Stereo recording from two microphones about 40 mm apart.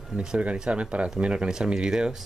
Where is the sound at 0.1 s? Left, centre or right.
Right.